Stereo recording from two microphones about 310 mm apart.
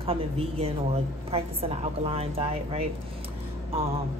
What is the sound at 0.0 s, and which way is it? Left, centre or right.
A woman's voice, centre.